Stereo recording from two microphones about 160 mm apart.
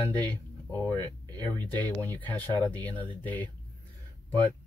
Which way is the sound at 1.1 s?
25° right (ahead or behind).